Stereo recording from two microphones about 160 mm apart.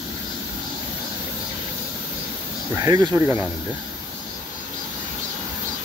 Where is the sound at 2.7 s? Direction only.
20° right (ahead or behind).